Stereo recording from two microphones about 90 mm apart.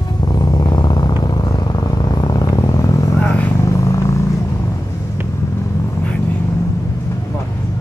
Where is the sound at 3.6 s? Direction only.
35° left (ahead or behind).